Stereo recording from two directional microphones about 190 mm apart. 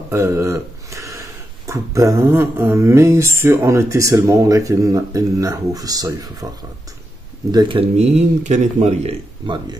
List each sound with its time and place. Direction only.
0.1 s a sound: 15° right (ahead or behind)
1.7 s mantra: 15° right (ahead or behind)
7.5 s speech: 25° right (ahead or behind)